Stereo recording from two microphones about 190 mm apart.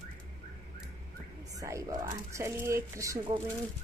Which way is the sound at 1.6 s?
15° right (ahead or behind).